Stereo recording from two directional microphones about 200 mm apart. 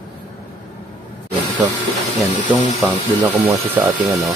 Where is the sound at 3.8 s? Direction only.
10° right (ahead or behind).